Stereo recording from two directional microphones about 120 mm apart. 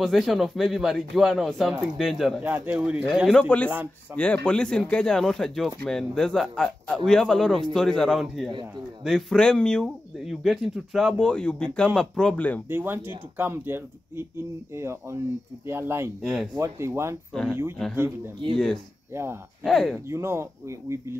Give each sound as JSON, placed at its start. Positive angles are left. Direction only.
{"t": 0.0, "sound": "speech", "side_deg": 0}
{"t": 2.4, "sound": "speech", "side_deg": -15}
{"t": 3.3, "sound": "speech", "side_deg": 10}
{"t": 11.1, "sound": "speech", "side_deg": 10}
{"t": 12.6, "sound": "speech", "side_deg": -20}
{"t": 16.2, "sound": "speech", "side_deg": 0}
{"t": 16.5, "sound": "speech", "side_deg": -25}
{"t": 17.3, "sound": "speech", "side_deg": 5}
{"t": 17.9, "sound": "speech", "side_deg": -20}
{"t": 19.6, "sound": "speech", "side_deg": 5}
{"t": 20.1, "sound": "speech", "side_deg": -20}